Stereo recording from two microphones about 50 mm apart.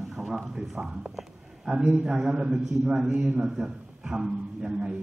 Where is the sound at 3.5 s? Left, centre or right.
Centre.